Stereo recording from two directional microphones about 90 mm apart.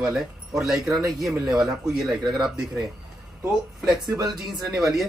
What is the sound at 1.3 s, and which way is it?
Speech, 45° right (ahead or behind).